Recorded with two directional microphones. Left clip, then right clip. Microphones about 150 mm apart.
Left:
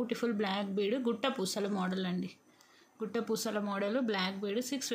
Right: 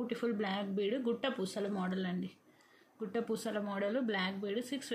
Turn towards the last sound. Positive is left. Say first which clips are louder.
# left 2 dB
turn(degrees=30)  # may be behind; listen again after turning